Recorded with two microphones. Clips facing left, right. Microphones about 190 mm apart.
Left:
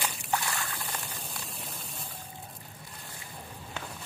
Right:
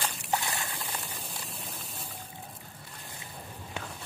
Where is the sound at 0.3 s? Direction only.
20° right (ahead or behind).